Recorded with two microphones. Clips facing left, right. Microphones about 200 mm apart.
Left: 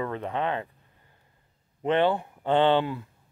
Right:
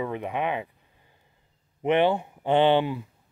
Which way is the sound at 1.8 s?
15° right (ahead or behind).